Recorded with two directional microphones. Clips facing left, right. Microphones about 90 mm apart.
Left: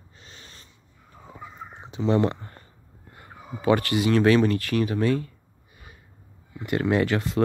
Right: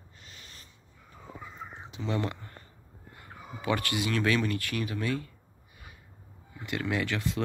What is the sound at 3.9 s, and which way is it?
Speech, 30° left (ahead or behind).